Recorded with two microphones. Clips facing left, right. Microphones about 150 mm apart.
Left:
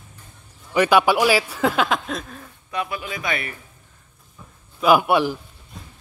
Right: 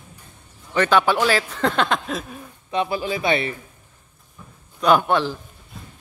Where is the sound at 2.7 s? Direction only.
30° right (ahead or behind).